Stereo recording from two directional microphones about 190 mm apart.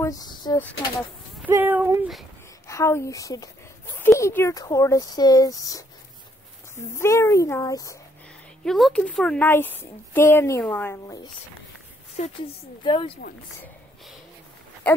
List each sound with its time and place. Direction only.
0.0 s speech: 20° left (ahead or behind)
1.4 s speech: 10° right (ahead or behind)
2.6 s a woman's voice: 15° left (ahead or behind)
8.6 s speech: centre (ahead or behind)
12.2 s speech: 35° left (ahead or behind)
14.8 s speech: 5° left (ahead or behind)